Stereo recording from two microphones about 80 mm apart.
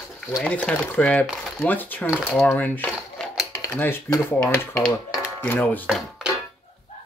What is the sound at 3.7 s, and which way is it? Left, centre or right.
Speech, left.